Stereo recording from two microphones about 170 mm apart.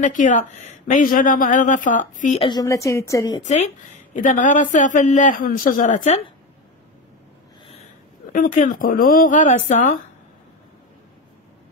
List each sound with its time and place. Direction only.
0.0 s a woman's voice: 50° left (ahead or behind)
2.4 s a woman's voice: 20° left (ahead or behind)
3.4 s a woman's voice: 40° left (ahead or behind)
8.3 s a woman's voice: 50° left (ahead or behind)